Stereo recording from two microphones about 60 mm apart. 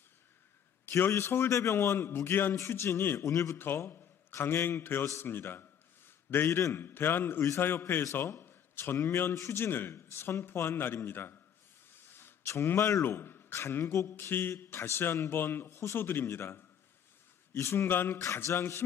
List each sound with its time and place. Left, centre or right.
0.8 s a man's voice: left
3.5 s a man's voice: left
5.2 s a sound: left
6.8 s a man's voice: left
8.2 s a sound: left
8.9 s a man's voice: left
18.2 s music: left
18.6 s a man's voice: left